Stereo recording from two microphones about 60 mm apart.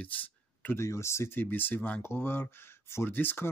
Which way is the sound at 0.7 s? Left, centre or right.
Left.